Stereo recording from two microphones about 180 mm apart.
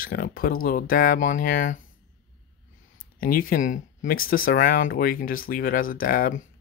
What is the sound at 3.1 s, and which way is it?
Speech, 50° left (ahead or behind).